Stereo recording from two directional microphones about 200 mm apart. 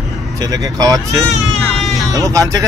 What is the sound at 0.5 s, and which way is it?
Speech, 20° right (ahead or behind).